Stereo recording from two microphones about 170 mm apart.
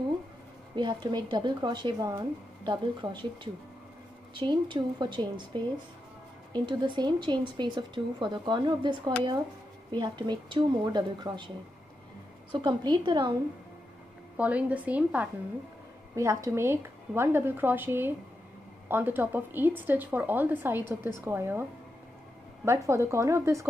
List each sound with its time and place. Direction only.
0.7 s speech: 25° right (ahead or behind)
4.3 s speech: 25° right (ahead or behind)
12.5 s speech: 25° right (ahead or behind)
14.3 s speech: 10° right (ahead or behind)
22.7 s speech: 15° right (ahead or behind)